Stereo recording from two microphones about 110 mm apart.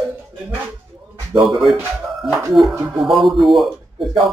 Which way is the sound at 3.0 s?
Centre (ahead or behind).